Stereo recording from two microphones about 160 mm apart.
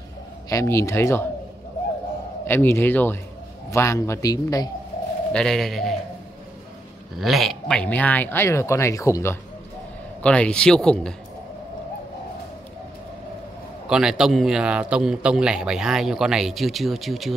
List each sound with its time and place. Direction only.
0.5 s speech: 20° left (ahead or behind)
2.4 s a man's voice: 15° left (ahead or behind)
5.3 s speech: 5° left (ahead or behind)
7.2 s speech: centre (ahead or behind); by 9.4 s 15° left (ahead or behind)
10.2 s speech: 5° left (ahead or behind)
13.8 s speech: 5° right (ahead or behind)